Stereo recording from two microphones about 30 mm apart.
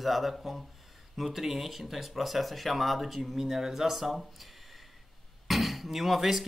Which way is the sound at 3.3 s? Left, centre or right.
Centre.